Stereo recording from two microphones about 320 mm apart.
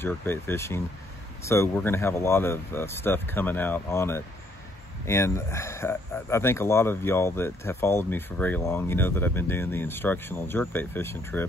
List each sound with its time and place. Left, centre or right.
0.0 s speech: centre